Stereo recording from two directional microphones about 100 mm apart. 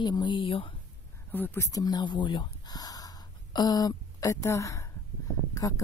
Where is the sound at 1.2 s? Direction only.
20° left (ahead or behind).